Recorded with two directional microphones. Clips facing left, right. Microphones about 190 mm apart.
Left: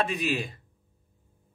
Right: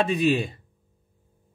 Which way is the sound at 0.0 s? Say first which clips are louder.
Right 6 dB; 30° right (ahead or behind).